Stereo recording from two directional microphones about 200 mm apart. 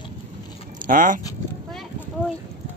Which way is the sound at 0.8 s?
40° right (ahead or behind).